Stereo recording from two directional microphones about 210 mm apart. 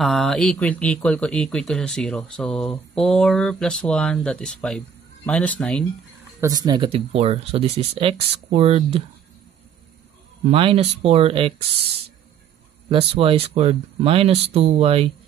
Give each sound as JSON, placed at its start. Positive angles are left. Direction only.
{"t": 0.0, "sound": "speech", "side_deg": 0}
{"t": 6.4, "sound": "speech", "side_deg": -20}
{"t": 10.5, "sound": "speech", "side_deg": -25}
{"t": 12.9, "sound": "speech", "side_deg": -25}